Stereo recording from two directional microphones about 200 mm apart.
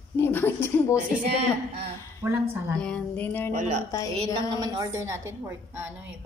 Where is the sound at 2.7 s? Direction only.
5° left (ahead or behind).